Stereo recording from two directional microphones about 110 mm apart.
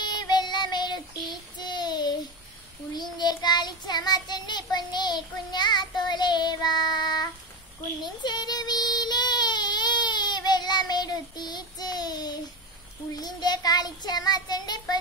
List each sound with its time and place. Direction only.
0.0 s child singing: 40° left (ahead or behind)